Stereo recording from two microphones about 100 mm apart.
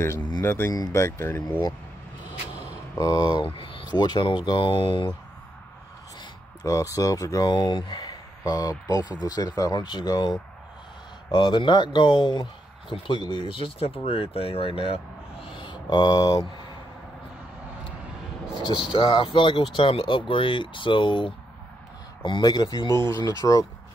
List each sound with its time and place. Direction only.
0.4 s speech: 25° left (ahead or behind)
3.0 s speech: 40° left (ahead or behind)
3.4 s a sound: 60° left (ahead or behind)
3.9 s speech: 45° left (ahead or behind)
6.6 s speech: 35° left (ahead or behind)
7.4 s speech: 50° left (ahead or behind)
11.3 s speech: 55° left (ahead or behind); by 15.0 s 70° left (ahead or behind)
15.5 s speech: 50° left (ahead or behind)
18.6 s speech: 55° left (ahead or behind)
23.1 s speech: 50° right (ahead or behind)